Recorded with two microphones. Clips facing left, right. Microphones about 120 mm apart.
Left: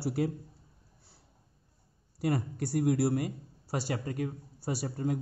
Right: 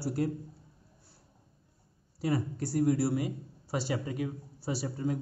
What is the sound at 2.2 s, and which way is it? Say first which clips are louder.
A man's voice: even; 55° left (ahead or behind).